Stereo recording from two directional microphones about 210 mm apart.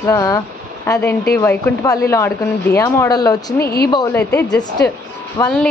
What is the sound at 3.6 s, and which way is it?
Speech, 45° left (ahead or behind).